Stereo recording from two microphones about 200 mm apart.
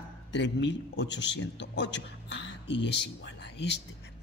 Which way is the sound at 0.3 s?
60° left (ahead or behind).